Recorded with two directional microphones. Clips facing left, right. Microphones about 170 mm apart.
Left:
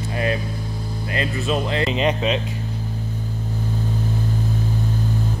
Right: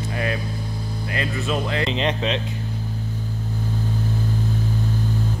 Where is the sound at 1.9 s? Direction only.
5° left (ahead or behind).